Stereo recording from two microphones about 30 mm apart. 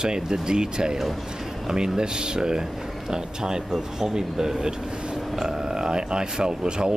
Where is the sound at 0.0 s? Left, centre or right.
Right.